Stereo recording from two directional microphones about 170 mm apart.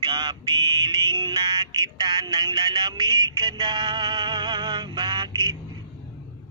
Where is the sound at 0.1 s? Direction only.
25° right (ahead or behind).